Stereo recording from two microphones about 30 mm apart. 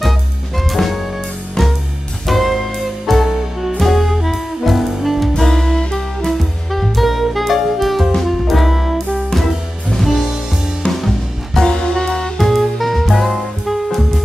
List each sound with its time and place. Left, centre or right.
0.6 s jazz: centre
1.6 s music: centre
2.2 s music: centre
5.4 s music: centre
6.7 s saxophone: centre
8.2 s music: centre
10.9 s music: centre
11.6 s music: left
12.4 s music: centre